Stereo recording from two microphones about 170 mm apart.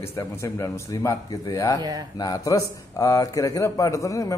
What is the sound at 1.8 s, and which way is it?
Speech, 25° right (ahead or behind).